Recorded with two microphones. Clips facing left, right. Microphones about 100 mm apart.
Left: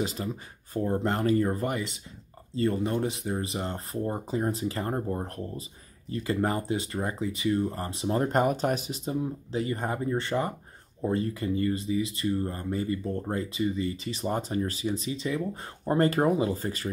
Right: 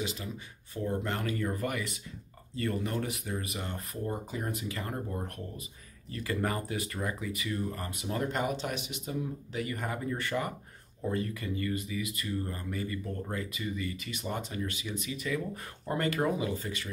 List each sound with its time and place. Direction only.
0.0 s speech: 40° left (ahead or behind)